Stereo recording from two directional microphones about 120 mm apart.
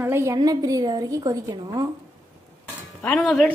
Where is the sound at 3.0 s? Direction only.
5° left (ahead or behind).